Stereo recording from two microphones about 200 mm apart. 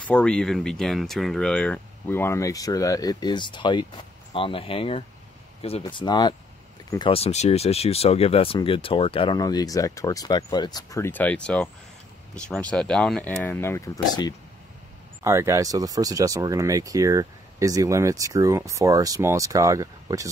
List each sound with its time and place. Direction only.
0.0 s speech: 5° left (ahead or behind)
15.2 s speech: 15° right (ahead or behind)